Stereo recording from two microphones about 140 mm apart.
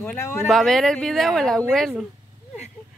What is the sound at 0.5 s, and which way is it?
A woman's voice, centre (ahead or behind).